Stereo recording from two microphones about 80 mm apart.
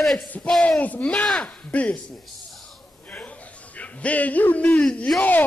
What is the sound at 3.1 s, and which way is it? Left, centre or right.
A man's voice, centre.